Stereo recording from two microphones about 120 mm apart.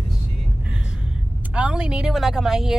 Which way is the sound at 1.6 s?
10° right (ahead or behind).